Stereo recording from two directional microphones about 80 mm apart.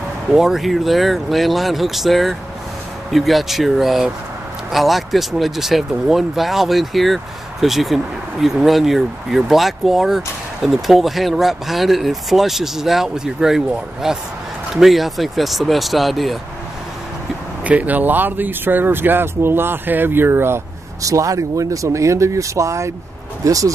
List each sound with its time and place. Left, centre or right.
0.3 s speech: centre
17.6 s speech: centre
21.0 s speech: right